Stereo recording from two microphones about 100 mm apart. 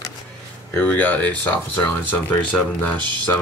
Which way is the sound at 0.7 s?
15° left (ahead or behind).